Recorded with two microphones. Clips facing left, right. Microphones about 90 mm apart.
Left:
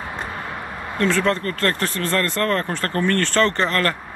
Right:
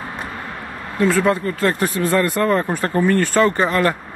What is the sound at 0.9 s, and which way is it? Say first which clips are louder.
Speech: right 3 dB; 5° right (ahead or behind).